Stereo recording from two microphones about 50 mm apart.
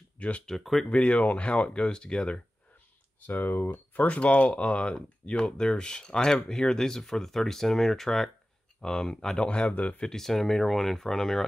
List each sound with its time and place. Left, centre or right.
0.5 s speech: centre
0.8 s speech: left
3.3 s speech: left
9.9 s speech: centre